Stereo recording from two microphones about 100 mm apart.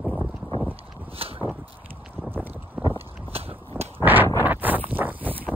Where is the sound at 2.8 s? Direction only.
20° right (ahead or behind).